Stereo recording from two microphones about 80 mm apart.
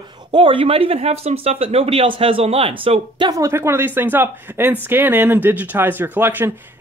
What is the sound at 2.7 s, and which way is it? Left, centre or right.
Speech, right.